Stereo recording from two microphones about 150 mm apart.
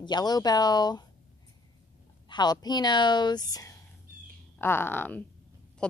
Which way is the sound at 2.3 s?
25° left (ahead or behind).